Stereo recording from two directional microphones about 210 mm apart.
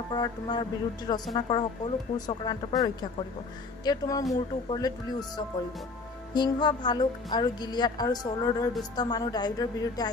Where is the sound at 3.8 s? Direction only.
20° left (ahead or behind).